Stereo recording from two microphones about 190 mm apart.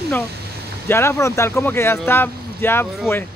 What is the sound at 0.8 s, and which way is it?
Speech, 15° left (ahead or behind).